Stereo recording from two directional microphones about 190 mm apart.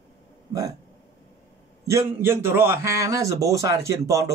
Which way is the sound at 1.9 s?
15° right (ahead or behind).